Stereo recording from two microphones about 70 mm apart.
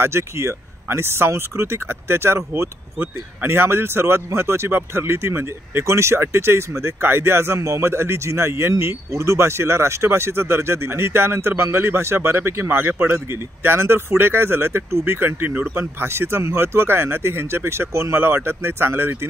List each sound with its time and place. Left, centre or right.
0.0 s speech: right